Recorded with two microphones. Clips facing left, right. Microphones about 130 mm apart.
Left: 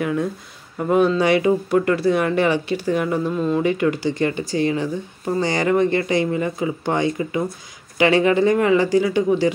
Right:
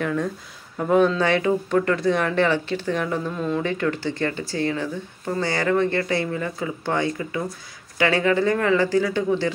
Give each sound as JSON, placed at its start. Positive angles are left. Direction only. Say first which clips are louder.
{"t": 0.0, "sound": "speech", "louder": "left 2 dB", "side_deg": 10}